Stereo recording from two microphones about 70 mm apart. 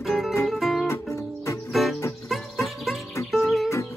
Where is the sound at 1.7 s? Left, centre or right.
Centre.